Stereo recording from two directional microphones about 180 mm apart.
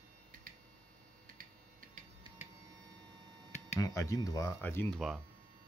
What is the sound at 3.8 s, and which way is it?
Speech, 15° left (ahead or behind).